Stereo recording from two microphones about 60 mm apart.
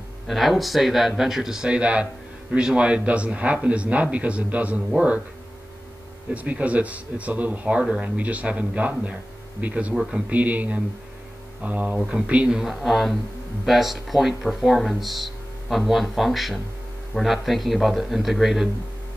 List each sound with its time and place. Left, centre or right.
0.3 s speech: centre; by 4.8 s right
6.3 s speech: right
12.0 s speech: centre
12.4 s speech: centre